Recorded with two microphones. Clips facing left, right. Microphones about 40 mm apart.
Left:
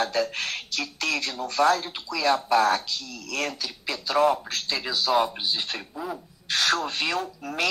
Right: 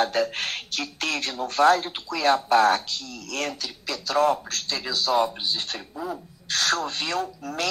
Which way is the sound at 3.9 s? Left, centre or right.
Centre.